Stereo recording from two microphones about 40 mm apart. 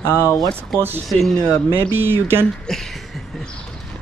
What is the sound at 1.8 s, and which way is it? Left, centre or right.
Speech, right.